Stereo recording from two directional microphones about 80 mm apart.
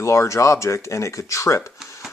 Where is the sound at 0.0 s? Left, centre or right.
Left.